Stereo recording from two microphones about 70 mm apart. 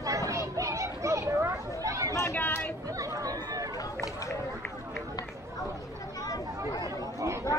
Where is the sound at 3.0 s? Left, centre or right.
Right.